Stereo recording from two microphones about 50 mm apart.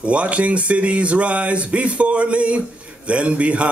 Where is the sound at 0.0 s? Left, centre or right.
Right.